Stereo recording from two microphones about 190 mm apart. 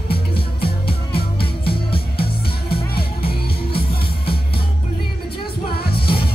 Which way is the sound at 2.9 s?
55° left (ahead or behind).